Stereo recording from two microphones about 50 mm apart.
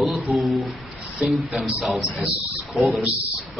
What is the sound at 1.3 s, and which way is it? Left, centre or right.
Speech, centre.